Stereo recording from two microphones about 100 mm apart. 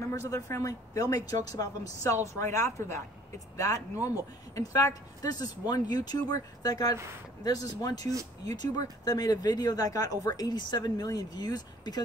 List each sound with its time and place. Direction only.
0.1 s speech: 35° left (ahead or behind)